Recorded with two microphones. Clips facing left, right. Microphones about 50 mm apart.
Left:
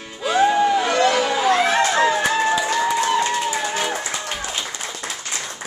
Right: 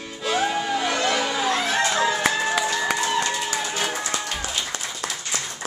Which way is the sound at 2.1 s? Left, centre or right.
Centre.